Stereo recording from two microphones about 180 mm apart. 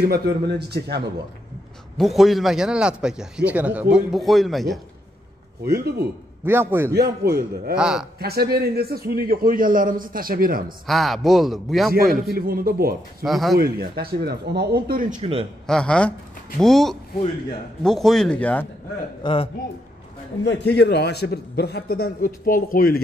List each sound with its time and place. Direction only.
0.0 s a man's voice: 60° right (ahead or behind)
2.0 s a man's voice: centre (ahead or behind)
6.4 s a man's voice: 10° right (ahead or behind)
6.9 s a man's voice: 60° right (ahead or behind)
7.7 s a man's voice: 5° right (ahead or behind)
8.2 s a man's voice: 60° right (ahead or behind)
10.9 s a man's voice: centre (ahead or behind)
12.3 s a man's voice: 55° right (ahead or behind)
13.2 s a man's voice: centre (ahead or behind)
13.6 s a man's voice: 60° right (ahead or behind); by 15.4 s 40° right (ahead or behind)
15.6 s a man's voice: 5° left (ahead or behind)
19.2 s a man's voice: 30° left (ahead or behind)
20.4 s a man's voice: 70° left (ahead or behind); by 23.0 s 55° left (ahead or behind)